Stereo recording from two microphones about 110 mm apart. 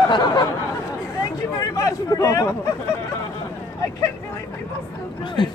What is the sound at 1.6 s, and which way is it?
Speech, 35° left (ahead or behind).